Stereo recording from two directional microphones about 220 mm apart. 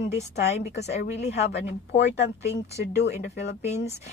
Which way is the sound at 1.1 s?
30° left (ahead or behind).